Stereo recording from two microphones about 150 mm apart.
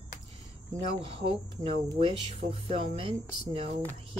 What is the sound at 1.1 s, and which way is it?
Speech, 40° right (ahead or behind).